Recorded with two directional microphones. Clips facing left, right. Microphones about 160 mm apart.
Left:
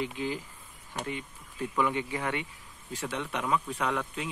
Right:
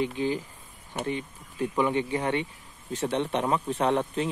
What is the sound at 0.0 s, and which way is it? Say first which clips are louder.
Speech: right 5 dB; 25° right (ahead or behind).